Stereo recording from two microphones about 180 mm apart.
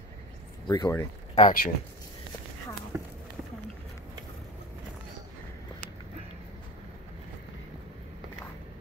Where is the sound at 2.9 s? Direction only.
10° right (ahead or behind).